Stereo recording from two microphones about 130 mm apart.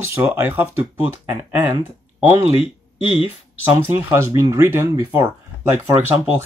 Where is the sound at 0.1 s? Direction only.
15° right (ahead or behind).